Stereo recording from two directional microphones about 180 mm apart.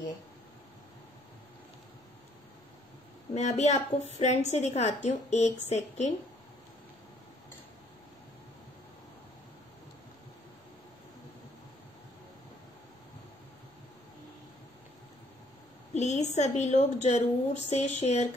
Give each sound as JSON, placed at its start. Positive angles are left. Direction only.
{"t": 3.3, "sound": "a woman's voice", "side_deg": 40}
{"t": 15.9, "sound": "a woman's voice", "side_deg": 40}